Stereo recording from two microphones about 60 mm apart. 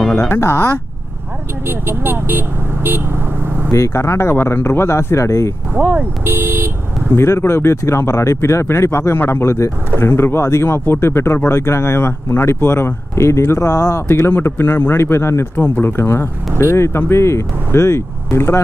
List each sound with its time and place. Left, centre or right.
0.1 s speech: left
1.7 s speech: right
3.7 s speech: left
5.8 s speech: right
6.2 s speech: right
7.2 s speech: left
15.5 s speech: left